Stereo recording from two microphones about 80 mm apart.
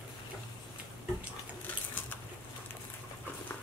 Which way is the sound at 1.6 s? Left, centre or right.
Left.